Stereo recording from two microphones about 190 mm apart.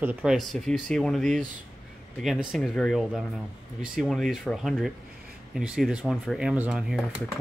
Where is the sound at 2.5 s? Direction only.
Centre (ahead or behind).